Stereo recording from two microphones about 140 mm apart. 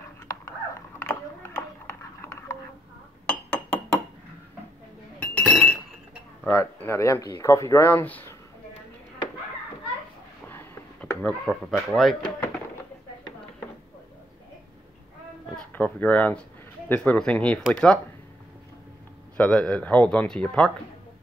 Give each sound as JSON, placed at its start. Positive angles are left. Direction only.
{"t": 0.3, "sound": "a sound", "side_deg": 20}
{"t": 3.3, "sound": "glass", "side_deg": 10}
{"t": 5.2, "sound": "chink", "side_deg": 10}
{"t": 6.4, "sound": "speech", "side_deg": 15}
{"t": 10.5, "sound": "a sound", "side_deg": 15}
{"t": 15.5, "sound": "speech", "side_deg": 10}
{"t": 19.3, "sound": "speech", "side_deg": 10}